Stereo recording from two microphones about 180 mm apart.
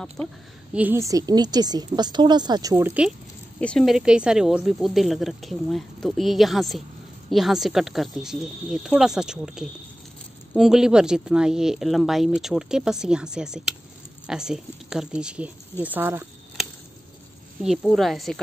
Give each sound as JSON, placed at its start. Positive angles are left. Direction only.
{"t": 0.7, "sound": "speech", "side_deg": -15}
{"t": 3.5, "sound": "speech", "side_deg": 5}
{"t": 17.6, "sound": "speech", "side_deg": 0}